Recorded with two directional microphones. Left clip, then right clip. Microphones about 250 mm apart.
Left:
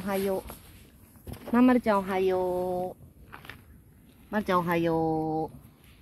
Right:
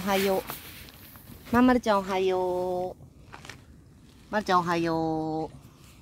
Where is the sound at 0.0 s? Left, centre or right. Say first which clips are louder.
Right 4 dB; right.